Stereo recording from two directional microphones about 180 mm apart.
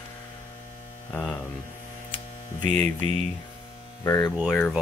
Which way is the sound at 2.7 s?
40° right (ahead or behind).